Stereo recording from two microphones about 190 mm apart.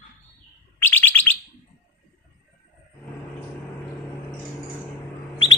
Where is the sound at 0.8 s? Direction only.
10° left (ahead or behind).